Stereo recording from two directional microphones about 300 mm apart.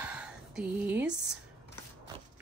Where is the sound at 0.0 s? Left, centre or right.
Centre.